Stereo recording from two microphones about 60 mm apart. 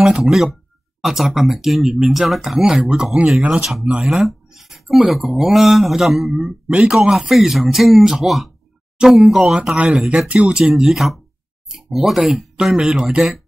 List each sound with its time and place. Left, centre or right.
0.0 s speech: centre
4.2 s speech: centre
6.3 s speech: centre
10.7 s speech: centre